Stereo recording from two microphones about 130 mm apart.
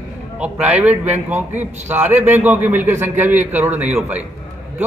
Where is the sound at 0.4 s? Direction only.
10° right (ahead or behind).